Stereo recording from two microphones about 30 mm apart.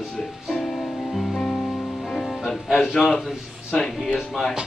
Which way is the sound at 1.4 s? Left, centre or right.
Left.